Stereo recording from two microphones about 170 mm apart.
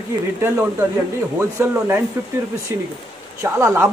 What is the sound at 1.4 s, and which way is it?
Speech, 15° right (ahead or behind).